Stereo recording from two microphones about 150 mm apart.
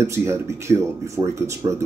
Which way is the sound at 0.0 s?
20° right (ahead or behind).